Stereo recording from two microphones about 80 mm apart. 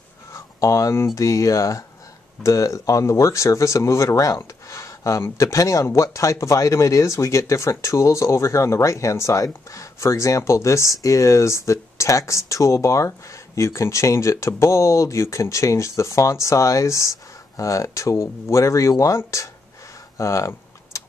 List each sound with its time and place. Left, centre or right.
0.3 s speech: left
20.2 s typing: left